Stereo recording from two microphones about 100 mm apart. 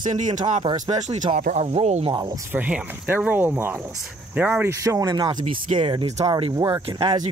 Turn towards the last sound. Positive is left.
turn(degrees=-55)  # may be behind; listen again after turning